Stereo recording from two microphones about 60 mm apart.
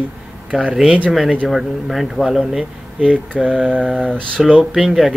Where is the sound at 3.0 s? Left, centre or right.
Centre.